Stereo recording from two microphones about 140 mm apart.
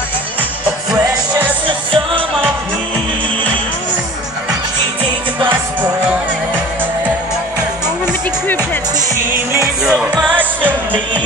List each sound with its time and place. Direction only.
1.7 s music: 35° right (ahead or behind)
5.5 s music: 10° right (ahead or behind)
9.8 s music: 5° right (ahead or behind)